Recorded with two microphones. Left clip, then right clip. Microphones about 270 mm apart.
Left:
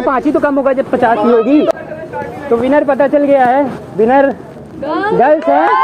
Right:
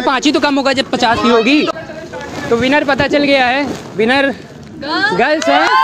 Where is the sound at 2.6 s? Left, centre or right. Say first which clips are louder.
Left 3 dB; centre.